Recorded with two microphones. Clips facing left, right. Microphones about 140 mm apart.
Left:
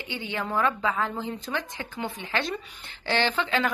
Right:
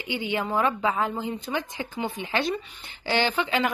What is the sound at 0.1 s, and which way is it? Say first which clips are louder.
A woman's voice: right 3 dB; 15° right (ahead or behind).